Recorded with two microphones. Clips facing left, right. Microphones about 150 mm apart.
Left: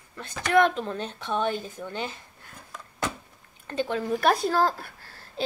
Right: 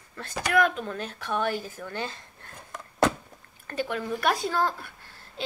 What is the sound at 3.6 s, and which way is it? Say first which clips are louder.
Speech: left 2 dB; 25° left (ahead or behind).